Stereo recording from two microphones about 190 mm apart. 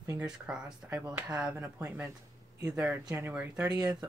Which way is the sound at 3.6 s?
20° right (ahead or behind).